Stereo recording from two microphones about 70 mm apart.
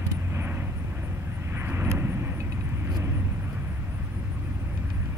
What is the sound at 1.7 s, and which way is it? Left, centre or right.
Vehicle, right.